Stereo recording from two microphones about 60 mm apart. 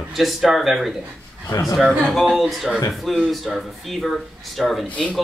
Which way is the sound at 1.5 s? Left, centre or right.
Left.